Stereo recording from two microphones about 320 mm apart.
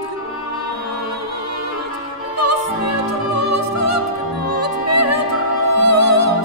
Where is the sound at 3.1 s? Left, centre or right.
Right.